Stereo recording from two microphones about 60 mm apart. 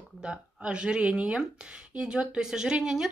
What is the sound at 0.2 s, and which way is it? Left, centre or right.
Speech, centre.